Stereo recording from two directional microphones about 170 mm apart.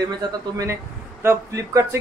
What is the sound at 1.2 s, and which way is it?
Speech, 15° right (ahead or behind).